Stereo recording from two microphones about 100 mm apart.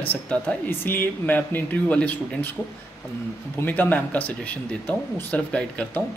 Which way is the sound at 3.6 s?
20° left (ahead or behind).